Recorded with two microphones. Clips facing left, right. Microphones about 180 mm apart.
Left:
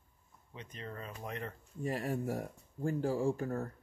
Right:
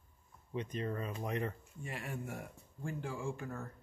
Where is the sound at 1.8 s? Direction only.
40° left (ahead or behind).